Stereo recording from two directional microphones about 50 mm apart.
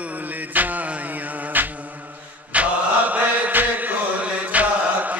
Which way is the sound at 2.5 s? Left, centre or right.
Right.